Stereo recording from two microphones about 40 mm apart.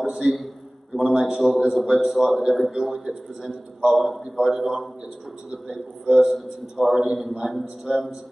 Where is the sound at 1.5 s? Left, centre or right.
Centre.